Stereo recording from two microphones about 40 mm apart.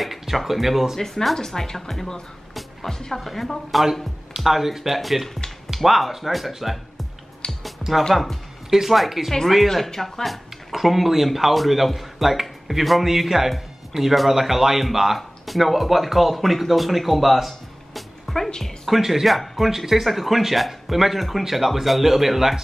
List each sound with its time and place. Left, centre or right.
0.0 s a sound: centre
0.5 s speech: centre
0.9 s speech: centre
2.5 s music: centre
3.2 s speech: centre
7.4 s music: centre
8.1 s music: centre
8.7 s speech: centre
9.3 s speech: centre
18.9 s speech: centre